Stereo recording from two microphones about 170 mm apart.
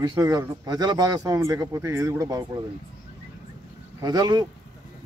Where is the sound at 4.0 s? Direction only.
25° right (ahead or behind).